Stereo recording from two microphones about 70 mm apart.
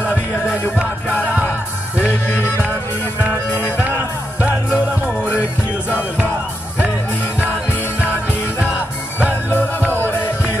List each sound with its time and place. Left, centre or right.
0.0 s music: left
2.0 s music: left
4.5 s music: right
9.2 s music: left